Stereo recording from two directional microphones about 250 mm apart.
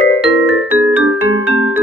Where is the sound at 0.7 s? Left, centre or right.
Centre.